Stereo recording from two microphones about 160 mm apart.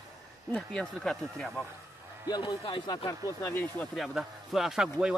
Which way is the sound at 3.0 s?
20° left (ahead or behind).